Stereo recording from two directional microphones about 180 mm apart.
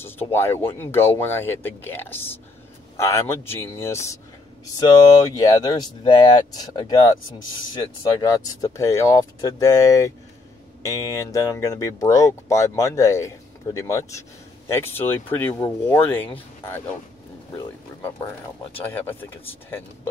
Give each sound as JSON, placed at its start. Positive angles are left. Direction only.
{"t": 0.0, "sound": "speech", "side_deg": 15}